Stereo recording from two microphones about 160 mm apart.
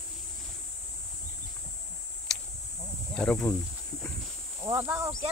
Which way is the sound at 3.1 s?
10° left (ahead or behind).